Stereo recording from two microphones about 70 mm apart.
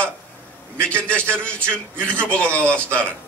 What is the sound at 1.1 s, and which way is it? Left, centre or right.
Speech, centre.